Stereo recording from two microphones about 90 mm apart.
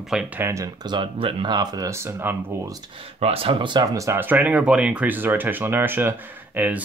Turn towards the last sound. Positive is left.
turn(degrees=-20)  # may be behind; listen again after turning